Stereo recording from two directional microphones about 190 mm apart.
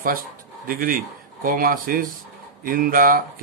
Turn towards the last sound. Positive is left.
turn(degrees=-50)  # may be behind; listen again after turning